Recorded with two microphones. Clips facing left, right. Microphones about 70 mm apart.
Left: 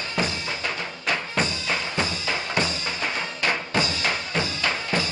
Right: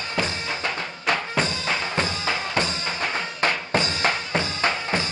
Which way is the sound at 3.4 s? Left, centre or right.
Right.